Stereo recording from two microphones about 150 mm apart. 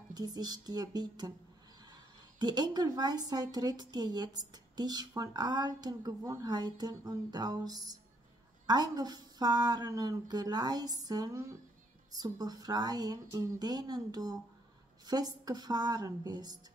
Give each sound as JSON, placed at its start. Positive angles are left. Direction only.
{"t": 0.1, "sound": "a woman's voice", "side_deg": -25}
{"t": 2.3, "sound": "a woman's voice", "side_deg": -30}